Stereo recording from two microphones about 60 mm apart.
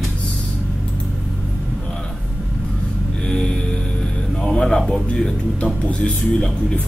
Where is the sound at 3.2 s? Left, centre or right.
Centre.